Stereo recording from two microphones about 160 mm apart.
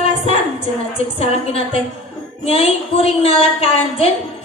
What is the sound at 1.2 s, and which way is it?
A woman's voice, 40° left (ahead or behind).